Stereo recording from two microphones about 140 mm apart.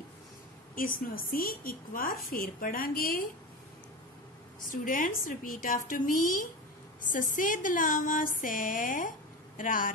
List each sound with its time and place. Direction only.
0.7 s a woman's voice: 90° left
4.6 s speech: 80° left